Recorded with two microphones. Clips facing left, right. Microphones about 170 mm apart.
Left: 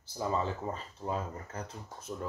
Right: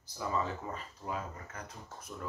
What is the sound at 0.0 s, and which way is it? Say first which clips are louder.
Speech: left 3 dB; 30° left (ahead or behind).